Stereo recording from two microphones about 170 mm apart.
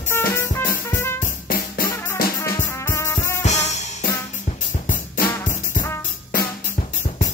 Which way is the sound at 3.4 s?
40° left (ahead or behind).